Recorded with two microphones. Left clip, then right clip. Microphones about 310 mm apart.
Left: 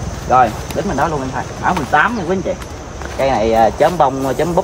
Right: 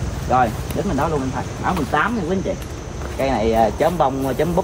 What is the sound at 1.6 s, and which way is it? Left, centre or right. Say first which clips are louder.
Speech: left 6 dB; left.